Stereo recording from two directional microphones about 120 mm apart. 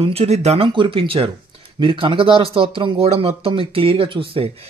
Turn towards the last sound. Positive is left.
turn(degrees=-50)  # may be behind; listen again after turning